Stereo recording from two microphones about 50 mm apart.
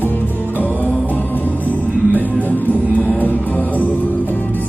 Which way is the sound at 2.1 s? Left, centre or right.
Left.